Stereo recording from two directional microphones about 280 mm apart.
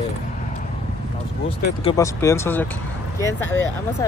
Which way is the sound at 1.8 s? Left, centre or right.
Centre.